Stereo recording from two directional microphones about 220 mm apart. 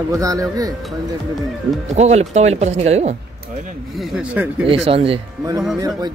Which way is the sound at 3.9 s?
Centre (ahead or behind).